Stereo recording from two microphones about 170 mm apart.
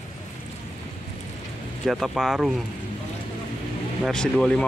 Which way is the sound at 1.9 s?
Centre (ahead or behind).